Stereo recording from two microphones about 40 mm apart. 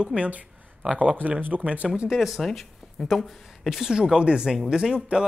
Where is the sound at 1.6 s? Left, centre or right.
Right.